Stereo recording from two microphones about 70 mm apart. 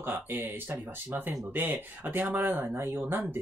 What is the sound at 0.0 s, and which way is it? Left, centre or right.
Speech, right.